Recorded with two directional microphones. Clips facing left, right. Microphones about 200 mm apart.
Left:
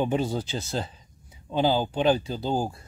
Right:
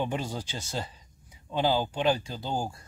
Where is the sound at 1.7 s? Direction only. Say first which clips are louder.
Left 3 dB; 30° left (ahead or behind).